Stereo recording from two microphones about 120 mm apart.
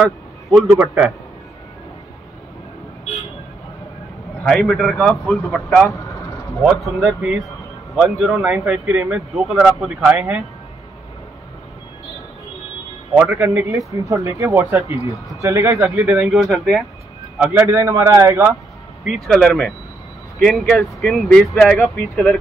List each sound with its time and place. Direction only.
0.7 s speech: 15° right (ahead or behind)
4.5 s speech: centre (ahead or behind)
5.9 s speech: 25° left (ahead or behind)
6.6 s speech: 5° right (ahead or behind)
13.1 s speech: 10° right (ahead or behind)
13.5 s speech: 25° right (ahead or behind); by 16.8 s centre (ahead or behind)
17.4 s speech: 10° right (ahead or behind)
17.6 s speech: 25° right (ahead or behind)
19.0 s speech: 5° left (ahead or behind)